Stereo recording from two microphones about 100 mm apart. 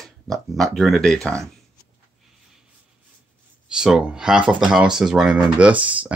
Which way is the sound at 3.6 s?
5° right (ahead or behind).